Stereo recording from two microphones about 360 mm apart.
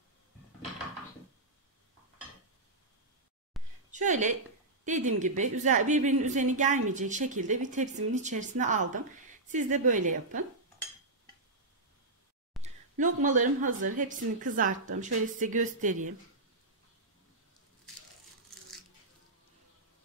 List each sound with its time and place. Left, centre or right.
3.6 s a sound: centre
3.9 s a woman's voice: right
12.6 s a woman's voice: right